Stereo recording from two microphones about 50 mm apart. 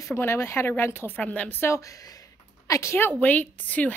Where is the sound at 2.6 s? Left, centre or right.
Left.